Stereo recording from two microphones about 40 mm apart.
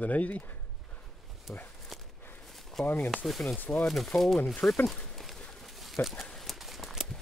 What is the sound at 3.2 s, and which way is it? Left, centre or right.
Speech, centre.